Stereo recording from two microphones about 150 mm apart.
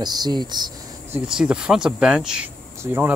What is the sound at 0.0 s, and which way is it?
Speech, 25° right (ahead or behind).